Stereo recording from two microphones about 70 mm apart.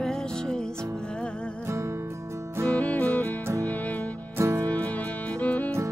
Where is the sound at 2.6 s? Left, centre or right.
Centre.